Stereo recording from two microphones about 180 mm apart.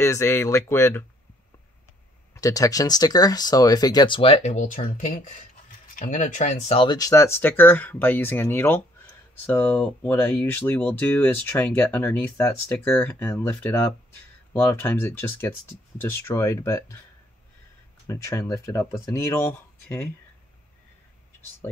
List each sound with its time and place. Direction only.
0.0 s speech: 15° left (ahead or behind)
2.3 s speech: 20° left (ahead or behind)
18.0 s speech: 15° left (ahead or behind)